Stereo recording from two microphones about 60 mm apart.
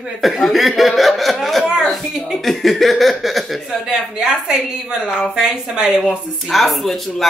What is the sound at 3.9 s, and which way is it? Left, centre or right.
Speech, centre.